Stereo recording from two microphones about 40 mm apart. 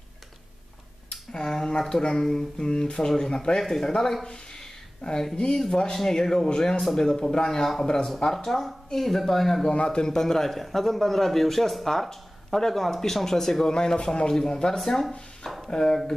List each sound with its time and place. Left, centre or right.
1.3 s a man's voice: centre
5.3 s a man's voice: centre
9.8 s a man's voice: left
14.8 s a man's voice: centre